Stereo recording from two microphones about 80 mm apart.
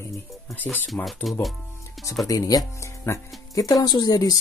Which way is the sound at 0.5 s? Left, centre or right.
Left.